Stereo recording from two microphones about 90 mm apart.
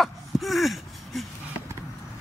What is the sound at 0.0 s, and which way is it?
Wail, centre (ahead or behind).